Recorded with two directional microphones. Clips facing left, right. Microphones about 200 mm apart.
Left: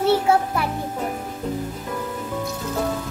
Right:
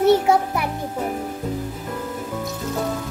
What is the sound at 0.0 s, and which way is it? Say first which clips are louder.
Music: right 2 dB; 15° right (ahead or behind).